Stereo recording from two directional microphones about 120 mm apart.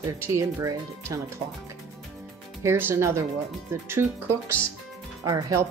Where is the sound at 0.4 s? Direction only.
25° right (ahead or behind).